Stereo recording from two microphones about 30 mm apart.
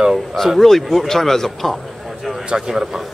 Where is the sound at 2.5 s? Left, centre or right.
Right.